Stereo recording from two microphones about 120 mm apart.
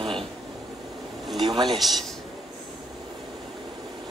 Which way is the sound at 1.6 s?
Centre (ahead or behind).